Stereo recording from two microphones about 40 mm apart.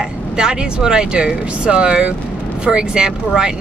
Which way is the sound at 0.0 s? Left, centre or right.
Right.